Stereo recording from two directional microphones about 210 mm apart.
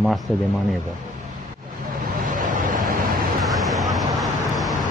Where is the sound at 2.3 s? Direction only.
40° right (ahead or behind).